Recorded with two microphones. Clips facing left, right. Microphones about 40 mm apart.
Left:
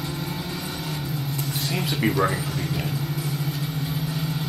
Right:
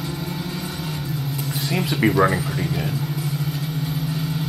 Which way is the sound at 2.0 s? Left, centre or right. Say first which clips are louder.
Right 5 dB; centre.